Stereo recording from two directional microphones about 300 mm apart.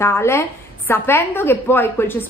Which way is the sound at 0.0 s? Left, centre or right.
Centre.